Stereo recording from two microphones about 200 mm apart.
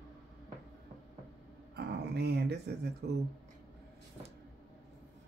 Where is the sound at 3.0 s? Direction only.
55° right (ahead or behind).